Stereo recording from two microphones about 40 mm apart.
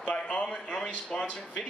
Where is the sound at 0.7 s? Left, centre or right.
Centre.